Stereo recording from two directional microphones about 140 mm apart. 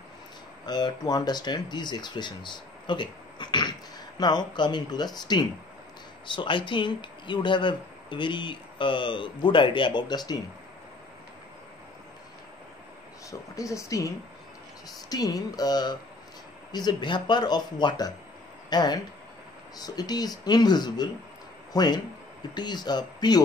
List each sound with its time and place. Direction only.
0.7 s speech: 30° left (ahead or behind)
13.3 s speech: 20° left (ahead or behind)